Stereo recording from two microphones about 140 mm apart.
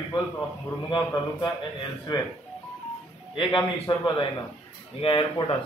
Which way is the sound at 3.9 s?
30° left (ahead or behind).